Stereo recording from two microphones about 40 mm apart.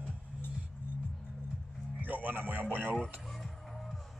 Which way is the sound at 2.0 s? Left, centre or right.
Right.